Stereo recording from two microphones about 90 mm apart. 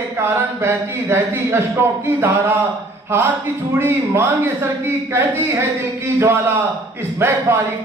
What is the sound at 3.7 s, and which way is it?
A man's voice, 25° right (ahead or behind).